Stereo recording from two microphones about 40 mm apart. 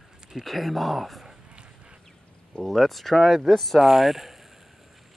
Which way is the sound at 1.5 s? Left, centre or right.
Right.